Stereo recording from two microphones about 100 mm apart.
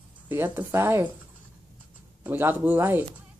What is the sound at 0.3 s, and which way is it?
Speech, 20° right (ahead or behind).